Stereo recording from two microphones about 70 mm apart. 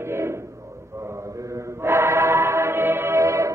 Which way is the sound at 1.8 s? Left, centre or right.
Right.